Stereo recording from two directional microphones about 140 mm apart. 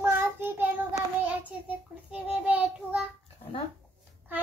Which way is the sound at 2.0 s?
10° right (ahead or behind).